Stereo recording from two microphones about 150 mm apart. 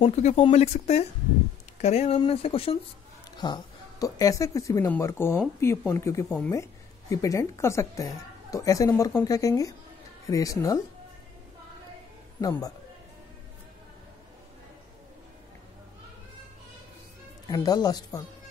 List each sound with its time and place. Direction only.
0.0 s speech: 45° left (ahead or behind)
3.3 s a woman's voice: 30° left (ahead or behind)
6.2 s speech: centre (ahead or behind)
7.1 s a woman's voice: 20° left (ahead or behind)
12.4 s a woman's voice: 25° left (ahead or behind)
17.5 s a woman's voice: 25° left (ahead or behind)